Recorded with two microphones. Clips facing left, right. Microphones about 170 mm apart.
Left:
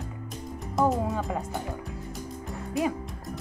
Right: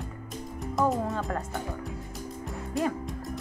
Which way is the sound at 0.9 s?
Centre (ahead or behind).